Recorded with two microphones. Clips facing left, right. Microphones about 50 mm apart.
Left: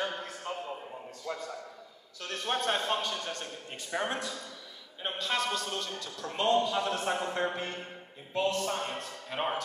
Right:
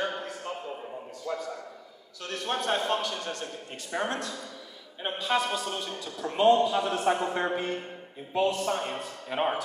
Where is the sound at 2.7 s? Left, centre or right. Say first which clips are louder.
Right 3 dB; right.